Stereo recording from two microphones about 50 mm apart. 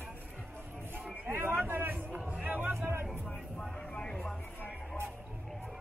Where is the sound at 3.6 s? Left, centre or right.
Centre.